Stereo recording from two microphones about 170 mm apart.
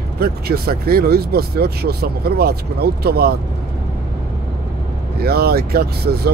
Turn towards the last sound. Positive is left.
turn(degrees=-70)  # may be behind; listen again after turning